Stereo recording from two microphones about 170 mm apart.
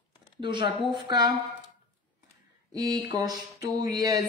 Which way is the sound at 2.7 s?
20° right (ahead or behind).